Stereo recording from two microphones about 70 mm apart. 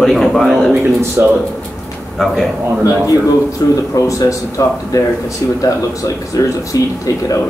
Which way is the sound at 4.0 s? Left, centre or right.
Left.